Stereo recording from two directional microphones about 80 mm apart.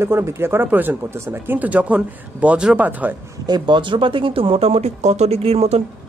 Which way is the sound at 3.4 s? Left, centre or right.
Right.